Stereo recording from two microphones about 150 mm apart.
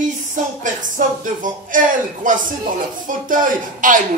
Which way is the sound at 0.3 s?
60° right (ahead or behind).